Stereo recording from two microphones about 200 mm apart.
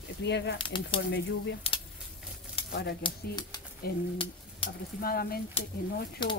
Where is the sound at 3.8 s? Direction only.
50° left (ahead or behind).